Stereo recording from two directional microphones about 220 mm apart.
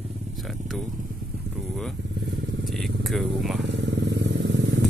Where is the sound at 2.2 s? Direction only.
50° right (ahead or behind).